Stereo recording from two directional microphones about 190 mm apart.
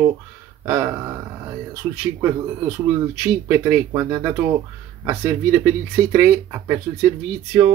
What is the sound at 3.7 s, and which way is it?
Speech, 15° right (ahead or behind).